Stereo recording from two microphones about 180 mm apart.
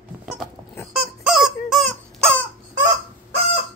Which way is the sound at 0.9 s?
5° right (ahead or behind).